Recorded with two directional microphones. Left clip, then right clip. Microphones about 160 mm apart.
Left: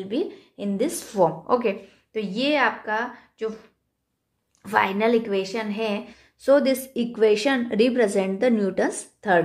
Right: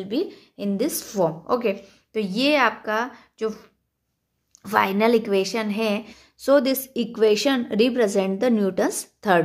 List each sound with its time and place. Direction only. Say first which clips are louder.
0.0 s a woman's voice: right 1 dB; 35° right (ahead or behind)
6.1 s a woman's voice: even; 30° right (ahead or behind)